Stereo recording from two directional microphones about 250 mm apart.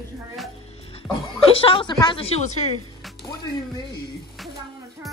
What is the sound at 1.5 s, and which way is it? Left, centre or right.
A woman's voice, left.